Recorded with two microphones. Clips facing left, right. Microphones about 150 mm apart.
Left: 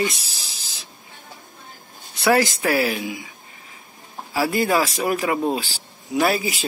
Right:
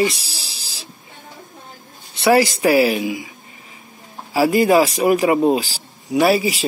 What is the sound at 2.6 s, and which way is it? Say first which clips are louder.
Speech: right 6 dB; 15° right (ahead or behind).